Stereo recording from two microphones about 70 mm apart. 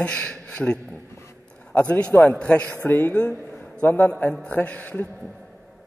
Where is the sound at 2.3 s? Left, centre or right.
Centre.